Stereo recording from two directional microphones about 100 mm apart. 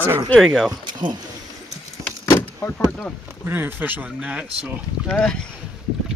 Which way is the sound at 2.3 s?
20° left (ahead or behind).